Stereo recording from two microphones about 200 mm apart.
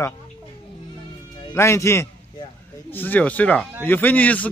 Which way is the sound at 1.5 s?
15° left (ahead or behind).